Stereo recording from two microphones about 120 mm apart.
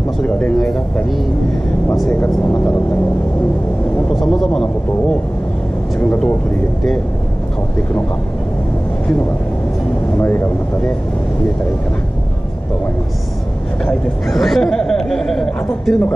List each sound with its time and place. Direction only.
0.2 s speech: 5° left (ahead or behind)
2.1 s speech: 15° left (ahead or behind)
4.1 s speech: centre (ahead or behind)
5.9 s speech: 10° left (ahead or behind)
10.1 s speech: 20° left (ahead or behind)
13.8 s speech: centre (ahead or behind)